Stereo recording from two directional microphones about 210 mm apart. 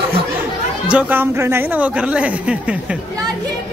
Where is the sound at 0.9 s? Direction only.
10° right (ahead or behind).